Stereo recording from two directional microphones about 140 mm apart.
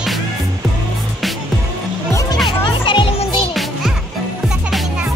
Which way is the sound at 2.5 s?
35° left (ahead or behind).